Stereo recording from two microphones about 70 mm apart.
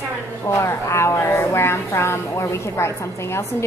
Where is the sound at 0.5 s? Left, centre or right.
Left.